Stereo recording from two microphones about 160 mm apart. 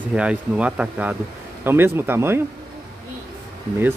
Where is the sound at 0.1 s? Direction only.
5° right (ahead or behind).